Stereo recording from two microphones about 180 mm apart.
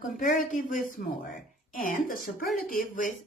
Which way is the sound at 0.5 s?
45° left (ahead or behind).